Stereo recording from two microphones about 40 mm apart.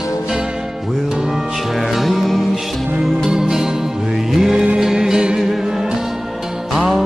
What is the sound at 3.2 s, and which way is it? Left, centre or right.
Music, centre.